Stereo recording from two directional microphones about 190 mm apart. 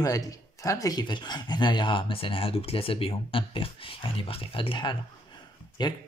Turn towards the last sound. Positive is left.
turn(degrees=25)  # may be behind; listen again after turning